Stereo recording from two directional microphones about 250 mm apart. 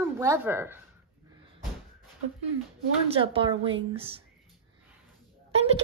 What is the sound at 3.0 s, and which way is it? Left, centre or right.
Speech, right.